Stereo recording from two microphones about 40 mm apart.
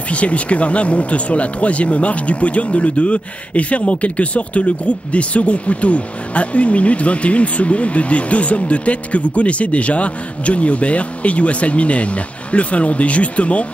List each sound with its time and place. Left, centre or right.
0.1 s speech: left